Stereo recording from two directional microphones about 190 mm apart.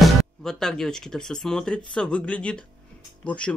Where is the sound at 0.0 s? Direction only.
Centre (ahead or behind).